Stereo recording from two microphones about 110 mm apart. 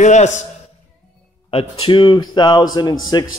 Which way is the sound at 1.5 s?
55° left (ahead or behind).